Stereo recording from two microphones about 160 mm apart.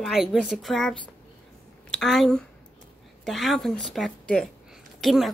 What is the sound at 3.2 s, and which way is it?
Cat, centre (ahead or behind).